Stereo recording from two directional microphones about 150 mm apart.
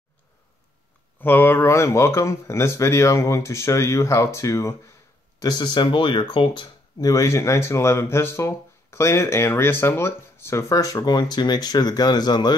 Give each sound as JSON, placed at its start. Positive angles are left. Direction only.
{"t": 1.2, "sound": "speech", "side_deg": 15}